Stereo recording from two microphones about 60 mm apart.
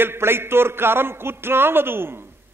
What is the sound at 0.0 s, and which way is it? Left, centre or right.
A man's voice, right.